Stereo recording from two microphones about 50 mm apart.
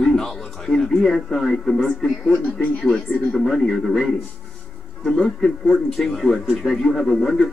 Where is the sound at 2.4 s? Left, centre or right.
Left.